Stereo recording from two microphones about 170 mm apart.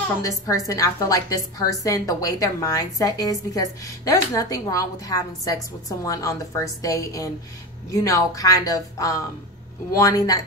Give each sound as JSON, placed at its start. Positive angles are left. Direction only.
{"t": 0.2, "sound": "a woman's voice", "side_deg": 20}